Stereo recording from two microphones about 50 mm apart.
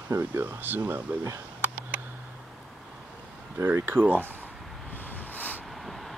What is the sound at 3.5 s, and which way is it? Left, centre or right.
Speech, right.